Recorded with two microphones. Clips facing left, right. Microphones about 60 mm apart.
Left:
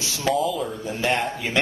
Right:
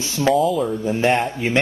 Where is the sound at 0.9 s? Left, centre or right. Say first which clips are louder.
Right 6 dB; right.